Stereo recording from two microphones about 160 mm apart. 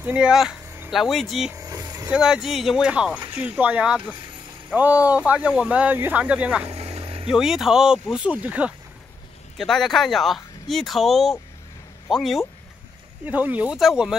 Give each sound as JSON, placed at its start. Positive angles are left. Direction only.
{"t": 0.0, "sound": "speech", "side_deg": -5}
{"t": 1.5, "sound": "vehicle", "side_deg": -20}
{"t": 2.0, "sound": "speech", "side_deg": -5}
{"t": 6.7, "sound": "vehicle", "side_deg": -40}
{"t": 7.2, "sound": "speech", "side_deg": -5}
{"t": 9.6, "sound": "speech", "side_deg": 0}
{"t": 13.2, "sound": "speech", "side_deg": -10}